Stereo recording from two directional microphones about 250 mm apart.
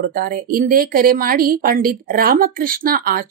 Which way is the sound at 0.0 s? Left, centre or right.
Right.